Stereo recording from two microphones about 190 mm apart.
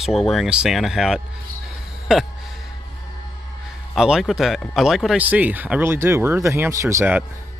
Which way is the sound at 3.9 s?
Centre (ahead or behind).